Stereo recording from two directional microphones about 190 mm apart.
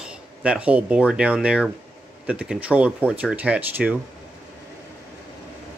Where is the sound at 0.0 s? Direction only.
5° right (ahead or behind).